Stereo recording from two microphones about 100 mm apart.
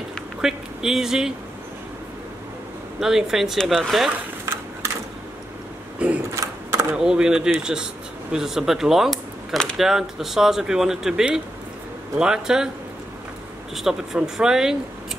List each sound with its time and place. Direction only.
0.4 s speech: 5° right (ahead or behind)
3.0 s speech: 5° right (ahead or behind)
6.0 s a sound: 15° right (ahead or behind)
6.3 s sewing machine: 30° right (ahead or behind)
7.0 s speech: 5° right (ahead or behind)
13.7 s speech: 5° right (ahead or behind)